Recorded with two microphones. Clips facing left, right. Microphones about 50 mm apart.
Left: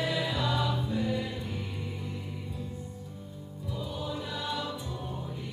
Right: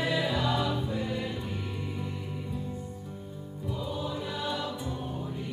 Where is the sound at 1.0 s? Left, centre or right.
Right.